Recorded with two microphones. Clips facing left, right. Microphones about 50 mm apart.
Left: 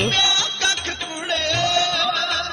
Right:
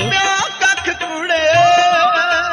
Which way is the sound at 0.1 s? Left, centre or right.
Right.